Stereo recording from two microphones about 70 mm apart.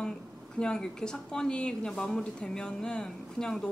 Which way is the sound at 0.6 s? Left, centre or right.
Centre.